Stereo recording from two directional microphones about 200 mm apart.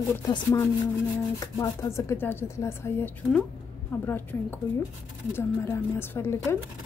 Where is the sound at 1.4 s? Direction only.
15° left (ahead or behind).